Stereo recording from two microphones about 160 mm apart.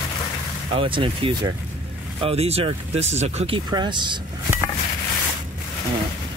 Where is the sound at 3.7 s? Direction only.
25° right (ahead or behind).